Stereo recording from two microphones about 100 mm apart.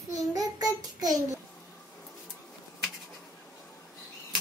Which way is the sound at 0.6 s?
40° right (ahead or behind).